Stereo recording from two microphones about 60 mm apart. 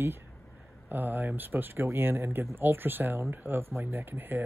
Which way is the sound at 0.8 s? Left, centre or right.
Right.